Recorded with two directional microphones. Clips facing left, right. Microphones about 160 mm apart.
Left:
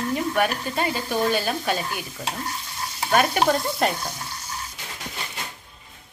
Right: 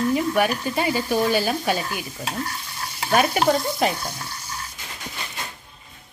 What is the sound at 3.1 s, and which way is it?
Speech, 10° right (ahead or behind).